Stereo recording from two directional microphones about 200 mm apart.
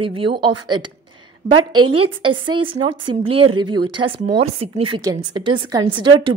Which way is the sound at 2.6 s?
25° right (ahead or behind).